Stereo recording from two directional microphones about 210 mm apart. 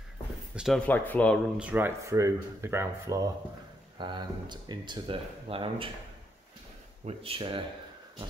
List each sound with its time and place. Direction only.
0.6 s speech: centre (ahead or behind)
1.6 s speech: 10° right (ahead or behind); by 5.9 s 25° right (ahead or behind)
7.1 s speech: 25° right (ahead or behind)